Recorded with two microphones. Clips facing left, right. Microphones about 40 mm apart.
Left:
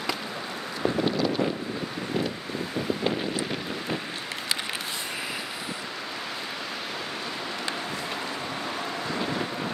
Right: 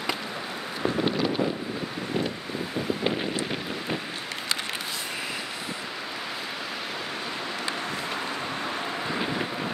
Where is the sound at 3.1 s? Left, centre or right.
Centre.